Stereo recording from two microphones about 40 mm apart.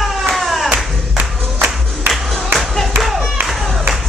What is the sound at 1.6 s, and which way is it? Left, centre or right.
Music, centre.